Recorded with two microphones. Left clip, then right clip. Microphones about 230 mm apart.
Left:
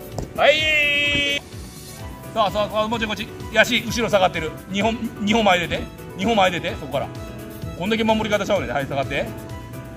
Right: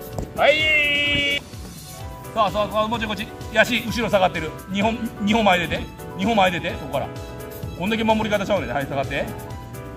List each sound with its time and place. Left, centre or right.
0.4 s music: left
2.3 s speech: left